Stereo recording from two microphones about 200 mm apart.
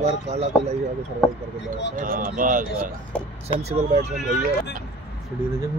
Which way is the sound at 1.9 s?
45° right (ahead or behind).